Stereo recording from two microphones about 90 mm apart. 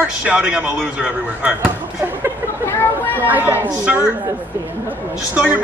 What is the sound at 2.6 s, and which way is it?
Chatter, 25° left (ahead or behind).